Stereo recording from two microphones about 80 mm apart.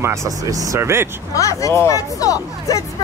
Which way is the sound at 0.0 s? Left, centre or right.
Right.